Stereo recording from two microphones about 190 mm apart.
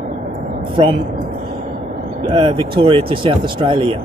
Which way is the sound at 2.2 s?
25° right (ahead or behind).